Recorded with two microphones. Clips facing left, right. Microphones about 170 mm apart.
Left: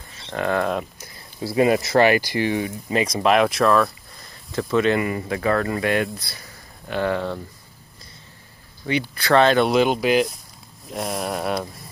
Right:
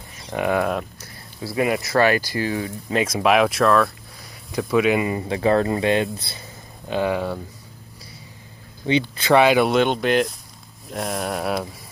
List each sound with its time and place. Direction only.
0.3 s speech: 15° right (ahead or behind)
1.0 s speech: 25° left (ahead or behind)
2.9 s speech: 5° right (ahead or behind)
5.0 s speech: 25° right (ahead or behind)
9.1 s speech: 15° right (ahead or behind)